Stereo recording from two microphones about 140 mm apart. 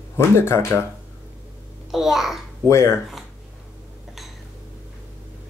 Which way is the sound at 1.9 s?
Centre (ahead or behind).